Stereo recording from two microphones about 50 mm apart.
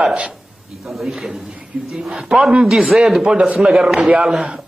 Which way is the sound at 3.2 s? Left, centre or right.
Centre.